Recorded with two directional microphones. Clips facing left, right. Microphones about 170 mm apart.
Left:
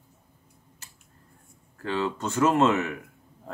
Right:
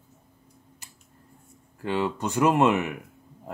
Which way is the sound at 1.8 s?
15° right (ahead or behind).